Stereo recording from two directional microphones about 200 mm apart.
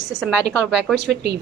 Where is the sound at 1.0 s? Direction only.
60° right (ahead or behind).